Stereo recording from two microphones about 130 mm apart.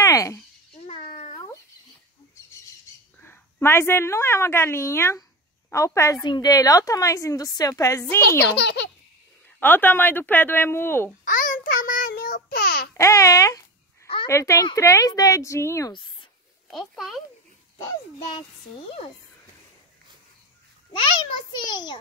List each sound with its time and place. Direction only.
0.0 s a sound: 25° left (ahead or behind)
0.7 s a sound: 45° left (ahead or behind)
2.4 s squawk: 25° left (ahead or behind)
3.2 s a woman's voice: 15° left (ahead or behind)
9.6 s speech: 15° left (ahead or behind)
11.2 s child singing: 90° left
12.9 s a woman's voice: 25° left (ahead or behind)
15.9 s a child's voice: 40° left (ahead or behind)
16.7 s speech: centre (ahead or behind)
20.9 s a child's voice: 35° left (ahead or behind)